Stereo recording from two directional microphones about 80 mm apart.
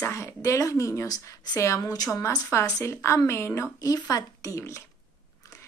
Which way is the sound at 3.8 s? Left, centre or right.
Left.